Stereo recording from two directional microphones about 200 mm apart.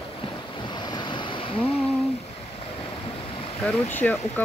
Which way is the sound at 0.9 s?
25° left (ahead or behind).